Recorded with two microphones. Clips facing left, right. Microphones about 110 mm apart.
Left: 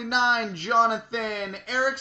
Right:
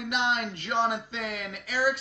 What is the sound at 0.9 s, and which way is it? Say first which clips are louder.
Speech: left 4 dB; 30° left (ahead or behind).